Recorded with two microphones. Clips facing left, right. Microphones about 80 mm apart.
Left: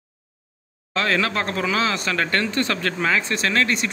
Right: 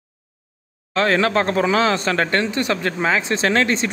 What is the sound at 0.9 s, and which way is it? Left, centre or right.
Speech, right.